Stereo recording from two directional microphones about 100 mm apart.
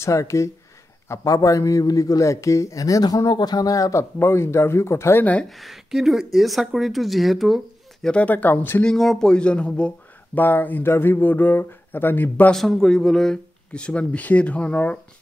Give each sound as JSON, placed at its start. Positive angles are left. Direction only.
{"t": 0.0, "sound": "a man's voice", "side_deg": 30}
{"t": 5.2, "sound": "speech", "side_deg": 15}
{"t": 5.6, "sound": "speech", "side_deg": 0}
{"t": 8.1, "sound": "speech", "side_deg": 15}
{"t": 8.8, "sound": "speech", "side_deg": 0}
{"t": 12.5, "sound": "speech", "side_deg": 5}